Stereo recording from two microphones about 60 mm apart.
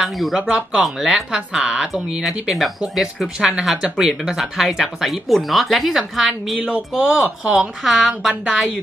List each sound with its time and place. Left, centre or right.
0.0 s speech: centre
0.4 s speech: right
0.8 s speech: centre
2.2 s speech: centre
6.7 s speech: centre